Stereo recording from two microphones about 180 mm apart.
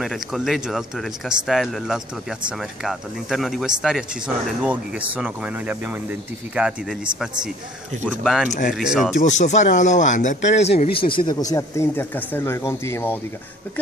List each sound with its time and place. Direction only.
0.0 s speech: centre (ahead or behind)
8.0 s speech: centre (ahead or behind)
8.5 s speech: 45° left (ahead or behind)
8.7 s speech: centre (ahead or behind)
9.1 s speech: 40° left (ahead or behind); by 13.2 s 15° left (ahead or behind)